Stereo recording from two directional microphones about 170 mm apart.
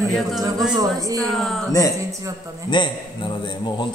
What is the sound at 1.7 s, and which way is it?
Speech, 20° left (ahead or behind).